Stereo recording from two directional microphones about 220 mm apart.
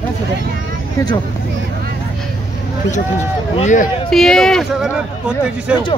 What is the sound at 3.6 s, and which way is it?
Speech, 35° left (ahead or behind).